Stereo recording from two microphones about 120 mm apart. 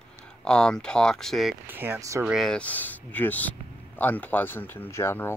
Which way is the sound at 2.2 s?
Centre (ahead or behind).